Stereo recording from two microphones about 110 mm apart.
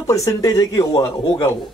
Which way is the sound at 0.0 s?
30° left (ahead or behind).